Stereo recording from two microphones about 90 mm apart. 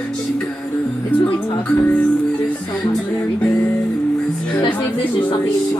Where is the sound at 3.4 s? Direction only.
15° left (ahead or behind).